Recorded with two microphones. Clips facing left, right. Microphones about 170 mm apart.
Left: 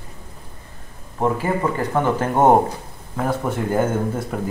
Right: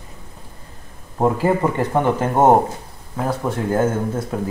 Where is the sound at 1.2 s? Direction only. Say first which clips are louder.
Right 3 dB; 30° right (ahead or behind).